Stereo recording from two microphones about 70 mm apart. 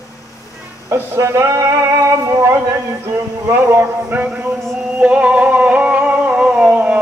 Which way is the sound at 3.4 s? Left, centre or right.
Right.